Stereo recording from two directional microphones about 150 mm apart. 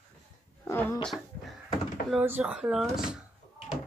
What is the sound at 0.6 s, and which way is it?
Speech, 15° left (ahead or behind).